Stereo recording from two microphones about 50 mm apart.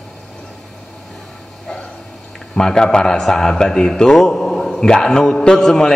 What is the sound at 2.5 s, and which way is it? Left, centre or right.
A man's voice, centre.